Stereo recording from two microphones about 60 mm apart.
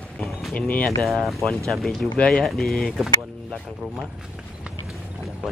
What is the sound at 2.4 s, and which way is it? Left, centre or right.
Speech, centre.